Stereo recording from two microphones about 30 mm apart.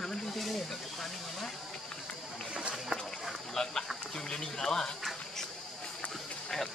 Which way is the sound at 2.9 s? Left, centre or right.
Right.